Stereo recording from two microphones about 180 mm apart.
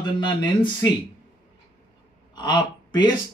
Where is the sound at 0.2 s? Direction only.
25° left (ahead or behind).